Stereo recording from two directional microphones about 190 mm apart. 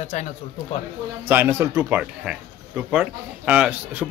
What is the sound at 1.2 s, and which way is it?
Speech, 10° right (ahead or behind).